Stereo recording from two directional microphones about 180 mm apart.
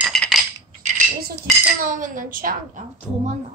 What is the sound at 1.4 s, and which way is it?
A woman's voice, 45° right (ahead or behind).